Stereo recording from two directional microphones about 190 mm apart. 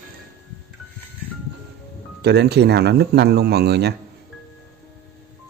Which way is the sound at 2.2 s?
60° right (ahead or behind).